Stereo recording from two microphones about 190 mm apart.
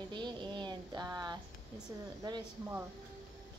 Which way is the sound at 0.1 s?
25° right (ahead or behind).